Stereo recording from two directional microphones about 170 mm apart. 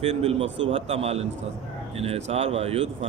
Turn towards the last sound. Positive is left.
turn(degrees=-35)  # may be behind; listen again after turning